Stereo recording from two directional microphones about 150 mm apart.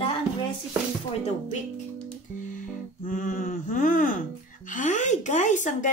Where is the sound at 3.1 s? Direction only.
60° left (ahead or behind).